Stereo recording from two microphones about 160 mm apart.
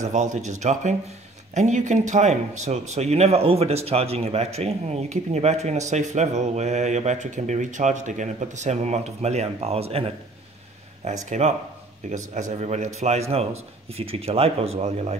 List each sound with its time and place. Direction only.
0.0 s a man's voice: 50° right (ahead or behind)